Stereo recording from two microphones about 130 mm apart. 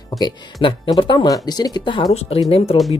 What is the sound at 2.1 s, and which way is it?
Speech, 50° left (ahead or behind).